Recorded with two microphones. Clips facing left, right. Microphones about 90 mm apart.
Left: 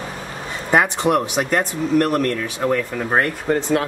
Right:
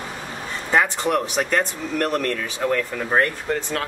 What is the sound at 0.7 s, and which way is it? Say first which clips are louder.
Speech: left 3 dB; 15° left (ahead or behind).